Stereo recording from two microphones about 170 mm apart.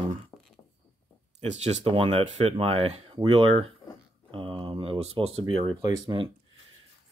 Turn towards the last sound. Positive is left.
turn(degrees=-25)  # may be behind; listen again after turning